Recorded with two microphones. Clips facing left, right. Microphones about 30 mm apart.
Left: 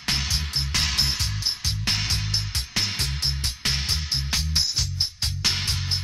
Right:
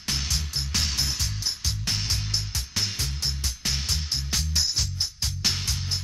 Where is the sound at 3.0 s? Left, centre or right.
Left.